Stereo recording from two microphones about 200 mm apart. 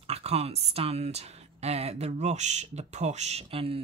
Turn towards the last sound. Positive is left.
turn(degrees=-30)  # may be behind; listen again after turning